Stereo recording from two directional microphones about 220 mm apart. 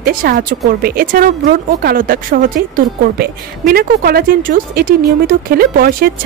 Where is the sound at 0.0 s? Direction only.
40° right (ahead or behind).